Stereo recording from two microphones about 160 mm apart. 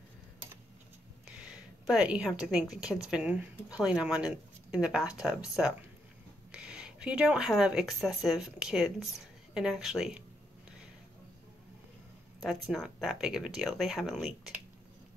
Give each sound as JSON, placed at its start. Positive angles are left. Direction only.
{"t": 1.2, "sound": "a woman's voice", "side_deg": -5}
{"t": 12.4, "sound": "speech", "side_deg": 0}